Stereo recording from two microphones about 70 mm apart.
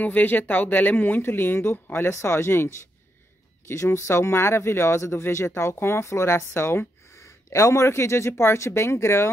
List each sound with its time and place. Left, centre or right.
0.0 s speech: left
7.2 s speech: left